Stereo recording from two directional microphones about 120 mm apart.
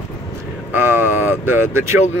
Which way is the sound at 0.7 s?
20° right (ahead or behind).